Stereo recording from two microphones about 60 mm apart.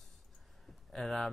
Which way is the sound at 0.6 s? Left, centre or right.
Centre.